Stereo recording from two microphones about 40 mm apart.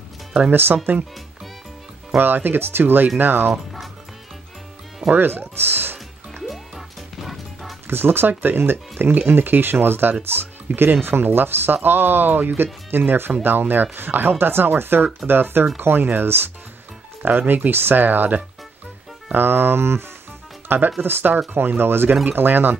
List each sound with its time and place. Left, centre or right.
0.5 s speech: right
2.1 s speech: right
5.1 s speech: right
6.4 s music: centre
7.8 s speech: right
8.3 s speech: right
17.2 s speech: right
17.6 s speech: right
20.6 s speech: right